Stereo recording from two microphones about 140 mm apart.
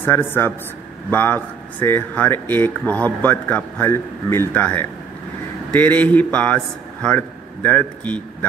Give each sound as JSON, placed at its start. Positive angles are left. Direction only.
{"t": 0.0, "sound": "a man's voice", "side_deg": 15}